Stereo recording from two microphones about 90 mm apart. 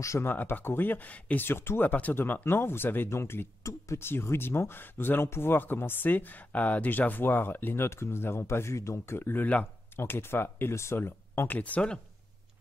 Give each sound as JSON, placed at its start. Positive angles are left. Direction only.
{"t": 0.0, "sound": "speech", "side_deg": 30}